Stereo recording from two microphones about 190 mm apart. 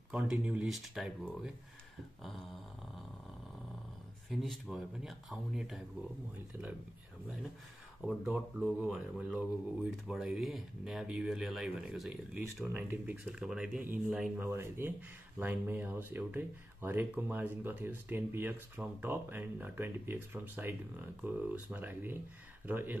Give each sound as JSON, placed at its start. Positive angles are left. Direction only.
{"t": 0.1, "sound": "speech", "side_deg": -5}
{"t": 4.3, "sound": "speech", "side_deg": 0}
{"t": 8.3, "sound": "speech", "side_deg": -5}